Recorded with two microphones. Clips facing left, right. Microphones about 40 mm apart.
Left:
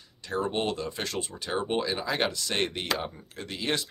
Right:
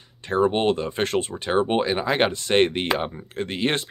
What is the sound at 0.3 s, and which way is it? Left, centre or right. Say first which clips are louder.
Speech: right 9 dB; right.